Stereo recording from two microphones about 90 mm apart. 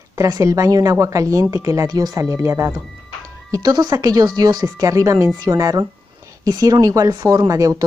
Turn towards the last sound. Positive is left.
turn(degrees=-40)  # may be behind; listen again after turning